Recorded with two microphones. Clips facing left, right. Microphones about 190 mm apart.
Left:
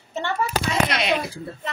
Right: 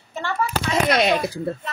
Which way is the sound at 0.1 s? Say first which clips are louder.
Even; 20° left (ahead or behind).